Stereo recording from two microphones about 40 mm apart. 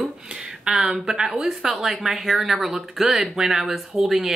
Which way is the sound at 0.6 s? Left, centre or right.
Centre.